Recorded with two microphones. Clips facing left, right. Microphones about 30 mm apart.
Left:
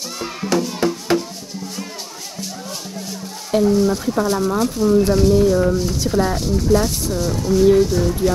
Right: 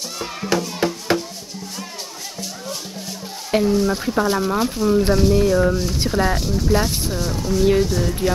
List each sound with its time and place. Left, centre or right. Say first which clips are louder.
0.5 s music: left 2 dB; centre
3.6 s speech: left 4 dB; centre
7.6 s speech: left 4 dB; centre
7.9 s speech: left 3 dB; centre